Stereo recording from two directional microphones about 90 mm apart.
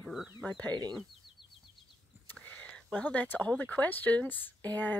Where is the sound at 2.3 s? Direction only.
20° left (ahead or behind).